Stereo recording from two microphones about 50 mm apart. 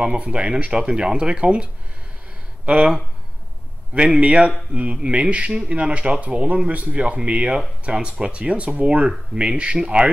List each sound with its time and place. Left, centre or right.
0.0 s speech: centre
3.9 s speech: right